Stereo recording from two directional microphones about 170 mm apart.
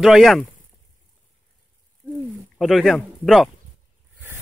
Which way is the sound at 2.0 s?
15° right (ahead or behind).